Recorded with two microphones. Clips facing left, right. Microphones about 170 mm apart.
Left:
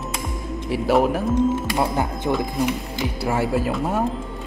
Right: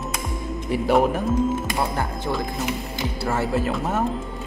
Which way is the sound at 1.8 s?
15° left (ahead or behind).